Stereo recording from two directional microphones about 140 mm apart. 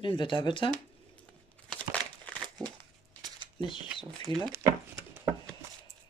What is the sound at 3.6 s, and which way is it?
Speech, 35° left (ahead or behind).